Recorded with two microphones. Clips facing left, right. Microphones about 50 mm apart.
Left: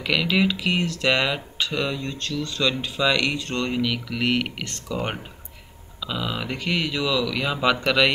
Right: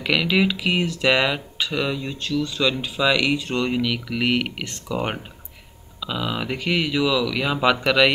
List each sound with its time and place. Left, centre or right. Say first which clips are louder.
0.0 s speech: right 2 dB; centre